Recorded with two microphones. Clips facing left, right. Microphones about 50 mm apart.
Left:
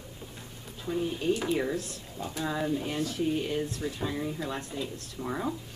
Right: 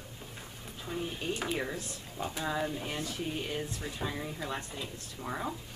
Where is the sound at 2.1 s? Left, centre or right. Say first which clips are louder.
Left 1 dB; right.